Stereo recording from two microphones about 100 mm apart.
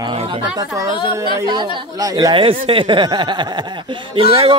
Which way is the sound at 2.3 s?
65° right (ahead or behind).